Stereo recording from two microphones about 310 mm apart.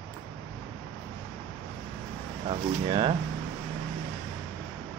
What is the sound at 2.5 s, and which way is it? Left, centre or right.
Speech, centre.